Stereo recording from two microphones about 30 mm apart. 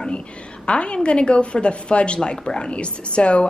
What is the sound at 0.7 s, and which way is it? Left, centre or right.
A woman's voice, left.